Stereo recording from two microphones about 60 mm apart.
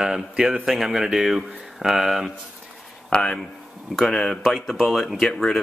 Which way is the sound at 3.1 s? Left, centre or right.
Centre.